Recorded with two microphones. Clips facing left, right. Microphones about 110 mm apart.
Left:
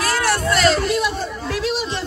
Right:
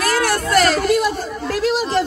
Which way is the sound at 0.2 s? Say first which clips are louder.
Even; 50° right (ahead or behind).